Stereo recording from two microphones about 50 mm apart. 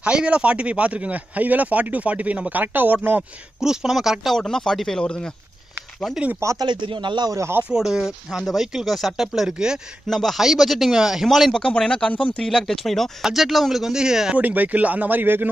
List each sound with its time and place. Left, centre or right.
0.0 s speech: right
2.5 s speech: right
3.6 s speech: centre
4.4 s speech: centre
6.4 s speech: right
7.7 s speech: centre
10.0 s speech: centre
10.4 s speech: centre
11.5 s speech: centre
12.4 s speech: centre
14.3 s speech: right